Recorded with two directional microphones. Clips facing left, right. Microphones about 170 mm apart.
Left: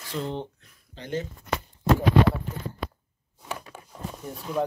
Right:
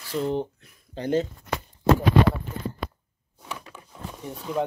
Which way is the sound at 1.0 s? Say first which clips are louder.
Right 7 dB; 35° right (ahead or behind).